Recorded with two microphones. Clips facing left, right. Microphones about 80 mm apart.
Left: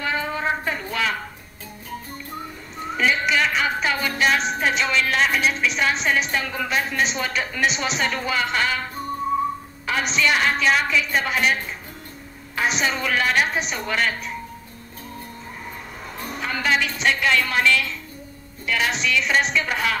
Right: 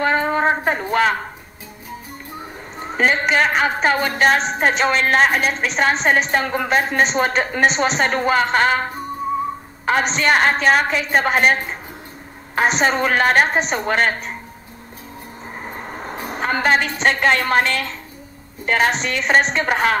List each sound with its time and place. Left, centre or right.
0.0 s a sound: right
2.8 s a woman's voice: right
15.6 s a woman's voice: right